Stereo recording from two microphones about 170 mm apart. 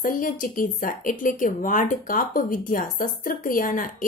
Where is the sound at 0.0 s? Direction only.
55° left (ahead or behind).